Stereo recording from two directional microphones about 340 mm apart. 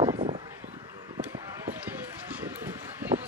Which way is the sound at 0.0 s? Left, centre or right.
Centre.